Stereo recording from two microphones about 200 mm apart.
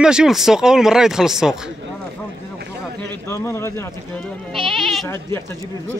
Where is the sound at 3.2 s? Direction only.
15° left (ahead or behind).